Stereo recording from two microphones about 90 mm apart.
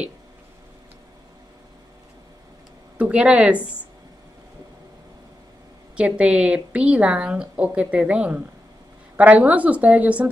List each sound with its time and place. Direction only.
3.0 s a woman's voice: 15° right (ahead or behind)
5.9 s a woman's voice: 15° right (ahead or behind)